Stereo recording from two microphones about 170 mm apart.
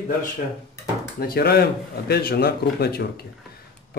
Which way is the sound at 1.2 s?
65° left (ahead or behind).